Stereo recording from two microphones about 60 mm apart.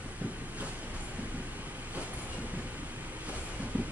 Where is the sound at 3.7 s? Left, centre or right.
Right.